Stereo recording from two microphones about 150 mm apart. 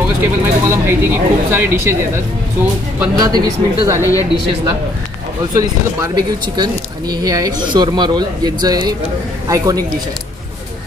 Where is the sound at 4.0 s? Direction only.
20° left (ahead or behind).